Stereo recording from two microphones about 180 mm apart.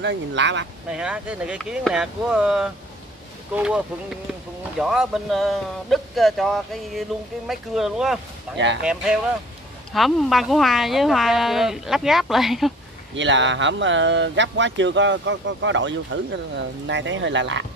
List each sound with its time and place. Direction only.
0.0 s speech: 85° right
0.8 s speech: 5° right (ahead or behind)
13.1 s speech: 90° right